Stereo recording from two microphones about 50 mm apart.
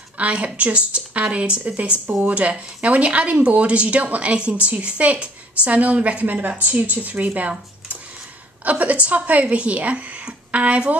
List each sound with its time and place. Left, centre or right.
0.2 s speech: right
6.2 s speech: right